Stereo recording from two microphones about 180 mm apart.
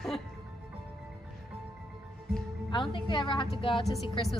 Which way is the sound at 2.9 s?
25° left (ahead or behind).